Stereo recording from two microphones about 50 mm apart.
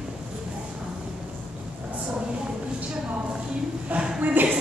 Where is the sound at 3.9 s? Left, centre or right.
Right.